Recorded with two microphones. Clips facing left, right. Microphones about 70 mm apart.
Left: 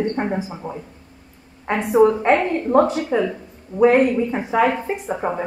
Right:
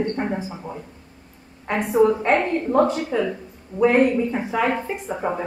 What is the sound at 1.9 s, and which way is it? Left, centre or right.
A woman's voice, centre.